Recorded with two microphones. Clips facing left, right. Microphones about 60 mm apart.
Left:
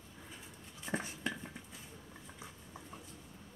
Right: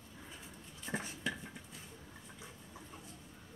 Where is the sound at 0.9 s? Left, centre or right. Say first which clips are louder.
Left 2 dB; centre.